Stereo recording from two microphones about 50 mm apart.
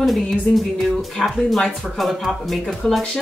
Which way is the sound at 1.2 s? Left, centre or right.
Centre.